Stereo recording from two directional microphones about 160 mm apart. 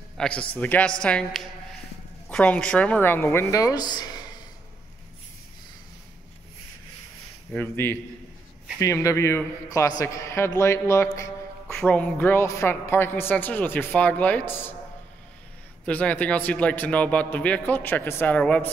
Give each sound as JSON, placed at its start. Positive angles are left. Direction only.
{"t": 0.2, "sound": "a woman's voice", "side_deg": 5}
{"t": 7.5, "sound": "a woman's voice", "side_deg": 10}
{"t": 11.7, "sound": "a woman's voice", "side_deg": 5}
{"t": 15.8, "sound": "a woman's voice", "side_deg": 10}